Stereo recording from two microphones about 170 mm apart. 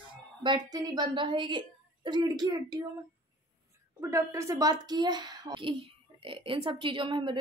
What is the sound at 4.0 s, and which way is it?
A woman's voice, 15° right (ahead or behind).